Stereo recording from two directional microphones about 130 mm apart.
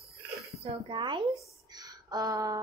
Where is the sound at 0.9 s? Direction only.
40° right (ahead or behind).